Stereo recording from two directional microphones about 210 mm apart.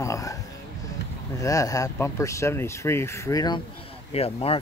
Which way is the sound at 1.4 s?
15° left (ahead or behind).